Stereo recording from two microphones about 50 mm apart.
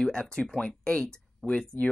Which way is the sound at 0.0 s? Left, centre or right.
Centre.